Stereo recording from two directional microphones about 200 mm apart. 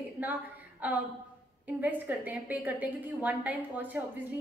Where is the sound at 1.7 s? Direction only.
10° right (ahead or behind).